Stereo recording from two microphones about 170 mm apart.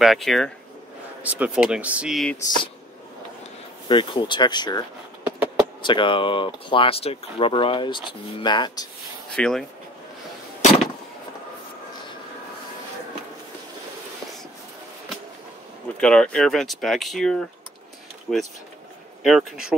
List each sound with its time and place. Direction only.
0.0 s speech: centre (ahead or behind)
3.9 s speech: 30° left (ahead or behind)
5.2 s a sound: 10° right (ahead or behind)
5.8 s speech: 30° left (ahead or behind)
9.3 s speech: 5° left (ahead or behind)
16.0 s speech: 5° left (ahead or behind)